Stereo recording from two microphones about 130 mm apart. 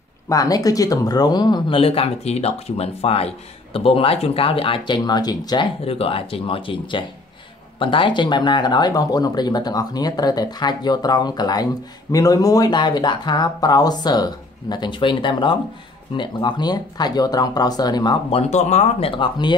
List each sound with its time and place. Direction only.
0.3 s speech: 25° left (ahead or behind)
1.8 s speech: 50° left (ahead or behind); by 5.7 s 30° left (ahead or behind)
5.9 s speech: 45° left (ahead or behind)
18.3 s speech: 60° left (ahead or behind); by 19.5 s 35° left (ahead or behind)